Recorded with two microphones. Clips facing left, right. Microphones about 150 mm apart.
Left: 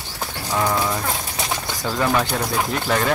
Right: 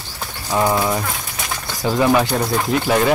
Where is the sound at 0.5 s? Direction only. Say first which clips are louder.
Right 4 dB; 25° right (ahead or behind).